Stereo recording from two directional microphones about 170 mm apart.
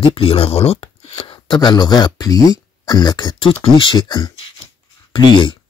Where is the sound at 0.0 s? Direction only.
30° left (ahead or behind).